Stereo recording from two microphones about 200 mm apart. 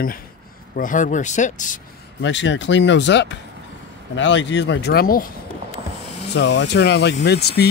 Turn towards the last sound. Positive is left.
turn(degrees=55)  # may be behind; listen again after turning